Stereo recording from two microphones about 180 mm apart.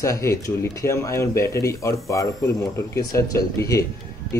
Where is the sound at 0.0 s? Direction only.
15° left (ahead or behind).